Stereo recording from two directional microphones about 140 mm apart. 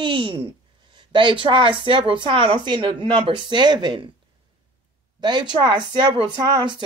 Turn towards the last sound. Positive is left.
turn(degrees=-30)  # may be behind; listen again after turning